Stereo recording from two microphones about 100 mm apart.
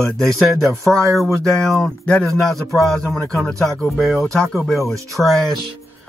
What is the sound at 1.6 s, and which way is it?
Speech, 5° left (ahead or behind).